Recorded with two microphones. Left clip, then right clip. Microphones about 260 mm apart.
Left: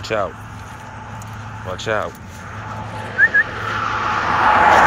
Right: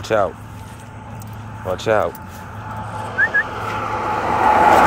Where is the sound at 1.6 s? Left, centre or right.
Right.